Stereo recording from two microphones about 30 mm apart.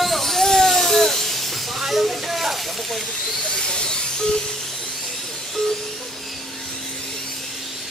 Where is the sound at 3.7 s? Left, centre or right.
Left.